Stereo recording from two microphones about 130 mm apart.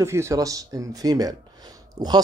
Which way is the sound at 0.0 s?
20° right (ahead or behind).